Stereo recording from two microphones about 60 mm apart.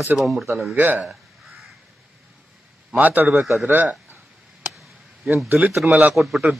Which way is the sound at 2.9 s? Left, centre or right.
Right.